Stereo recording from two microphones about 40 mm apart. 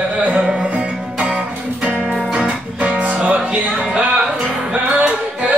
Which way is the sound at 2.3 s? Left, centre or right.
Right.